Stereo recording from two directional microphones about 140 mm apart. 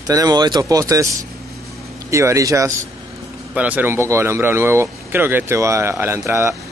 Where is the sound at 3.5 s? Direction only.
10° right (ahead or behind).